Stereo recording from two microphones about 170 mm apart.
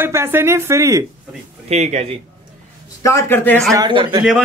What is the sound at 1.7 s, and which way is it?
Speech, 40° right (ahead or behind).